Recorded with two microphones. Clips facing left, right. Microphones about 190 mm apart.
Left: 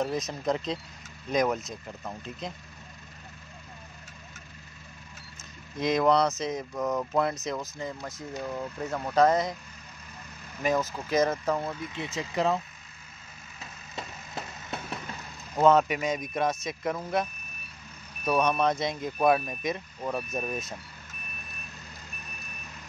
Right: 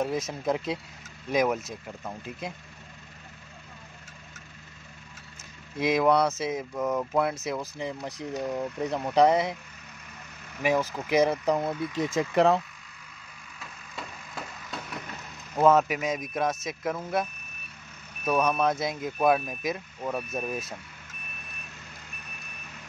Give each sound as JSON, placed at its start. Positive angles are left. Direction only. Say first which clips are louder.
{"t": 0.0, "sound": "speech", "louder": "right 1 dB", "side_deg": -10}
{"t": 5.8, "sound": "speech", "louder": "right 1 dB", "side_deg": -5}
{"t": 10.6, "sound": "speech", "louder": "right 2 dB", "side_deg": -10}
{"t": 11.9, "sound": "speech", "louder": "right 7 dB", "side_deg": -45}
{"t": 13.6, "sound": "vehicle", "louder": "left 1 dB", "side_deg": 20}
{"t": 15.5, "sound": "speech", "louder": "even", "side_deg": -5}
{"t": 18.4, "sound": "speech", "louder": "even", "side_deg": -5}